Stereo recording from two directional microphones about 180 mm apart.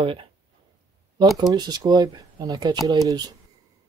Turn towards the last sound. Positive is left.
turn(degrees=-20)  # may be behind; listen again after turning